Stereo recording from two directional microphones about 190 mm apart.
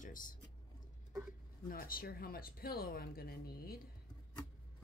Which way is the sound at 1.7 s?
50° left (ahead or behind).